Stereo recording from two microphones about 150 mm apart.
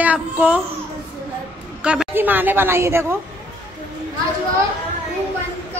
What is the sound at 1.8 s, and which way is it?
Speech, 5° right (ahead or behind).